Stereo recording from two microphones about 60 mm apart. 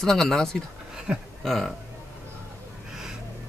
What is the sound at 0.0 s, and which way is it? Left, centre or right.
Speech, centre.